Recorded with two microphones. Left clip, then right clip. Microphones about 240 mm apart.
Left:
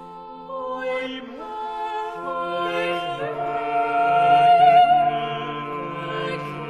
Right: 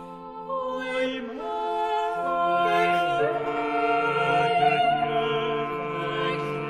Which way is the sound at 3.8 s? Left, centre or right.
Centre.